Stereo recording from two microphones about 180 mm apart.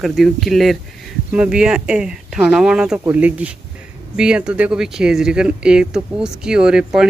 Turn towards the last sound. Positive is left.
turn(degrees=-5)  # may be behind; listen again after turning